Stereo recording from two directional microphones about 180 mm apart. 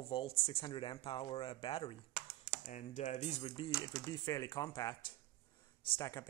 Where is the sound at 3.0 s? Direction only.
40° left (ahead or behind); by 4.9 s 20° left (ahead or behind).